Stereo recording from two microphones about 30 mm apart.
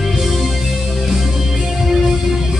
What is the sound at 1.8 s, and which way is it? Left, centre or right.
Music, centre.